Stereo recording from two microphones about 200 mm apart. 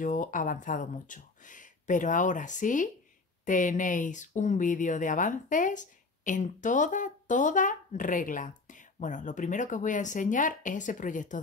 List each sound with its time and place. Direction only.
0.0 s speech: 40° left (ahead or behind)